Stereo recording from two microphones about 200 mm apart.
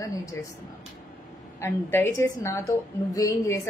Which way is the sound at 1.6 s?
10° left (ahead or behind).